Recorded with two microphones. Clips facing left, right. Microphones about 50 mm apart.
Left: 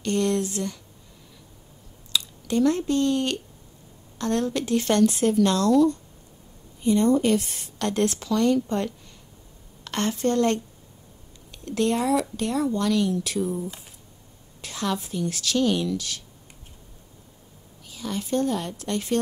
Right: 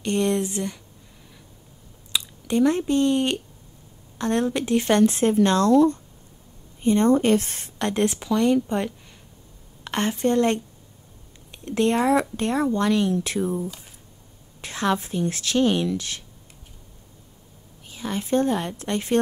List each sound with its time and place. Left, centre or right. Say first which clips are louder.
0.0 s speech: right 1 dB; right
2.1 s a woman's voice: right 2 dB; right
7.8 s a woman's voice: right 1 dB; right
14.6 s a woman's voice: right 4 dB; right
17.8 s speech: right 2 dB; right